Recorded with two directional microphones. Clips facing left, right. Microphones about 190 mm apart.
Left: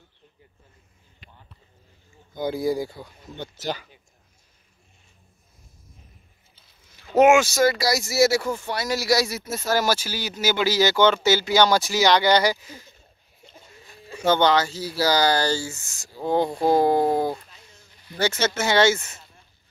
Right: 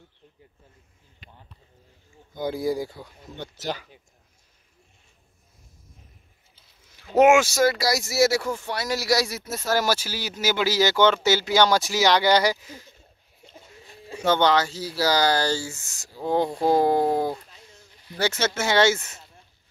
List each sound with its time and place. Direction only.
2.3 s speech: 5° left (ahead or behind)
7.2 s speech: 5° right (ahead or behind)
13.8 s a sound: 25° right (ahead or behind)
14.2 s speech: centre (ahead or behind)